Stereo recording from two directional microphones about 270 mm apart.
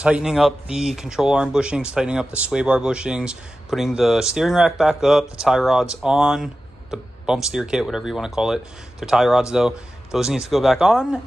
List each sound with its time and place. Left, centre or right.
0.0 s speech: centre